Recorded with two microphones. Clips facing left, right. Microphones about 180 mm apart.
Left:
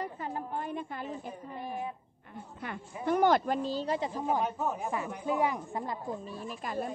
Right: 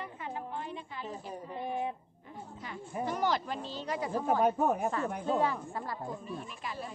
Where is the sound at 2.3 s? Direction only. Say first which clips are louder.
Left 3 dB; 60° left (ahead or behind); by 4.1 s 30° left (ahead or behind).